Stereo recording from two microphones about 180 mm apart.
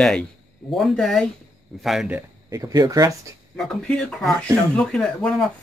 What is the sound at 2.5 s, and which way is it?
Speech, 20° right (ahead or behind).